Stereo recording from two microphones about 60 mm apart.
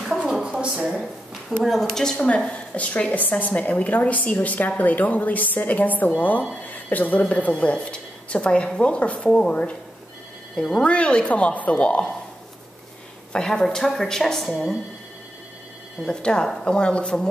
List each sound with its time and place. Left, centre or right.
0.0 s a sound: centre
1.6 s a woman's voice: centre
13.3 s speech: centre
16.1 s speech: centre